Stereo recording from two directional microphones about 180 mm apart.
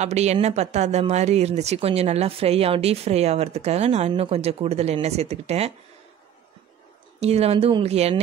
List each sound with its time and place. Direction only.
0.0 s speech: 40° right (ahead or behind)
7.2 s speech: 35° right (ahead or behind)